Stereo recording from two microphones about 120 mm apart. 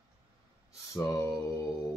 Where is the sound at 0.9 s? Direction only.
25° left (ahead or behind).